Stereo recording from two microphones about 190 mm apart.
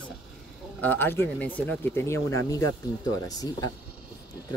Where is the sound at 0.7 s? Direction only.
10° left (ahead or behind).